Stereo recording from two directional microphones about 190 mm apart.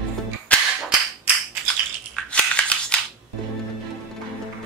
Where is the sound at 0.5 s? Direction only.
5° left (ahead or behind).